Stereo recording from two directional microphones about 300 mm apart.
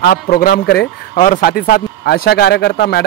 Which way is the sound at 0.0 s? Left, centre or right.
Left.